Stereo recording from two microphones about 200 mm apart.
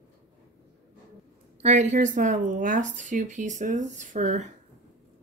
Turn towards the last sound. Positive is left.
turn(degrees=-35)  # may be behind; listen again after turning